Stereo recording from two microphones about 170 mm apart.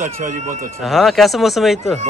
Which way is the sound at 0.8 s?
Centre (ahead or behind).